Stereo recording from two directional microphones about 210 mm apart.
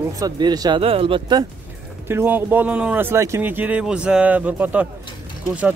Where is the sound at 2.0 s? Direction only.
10° right (ahead or behind).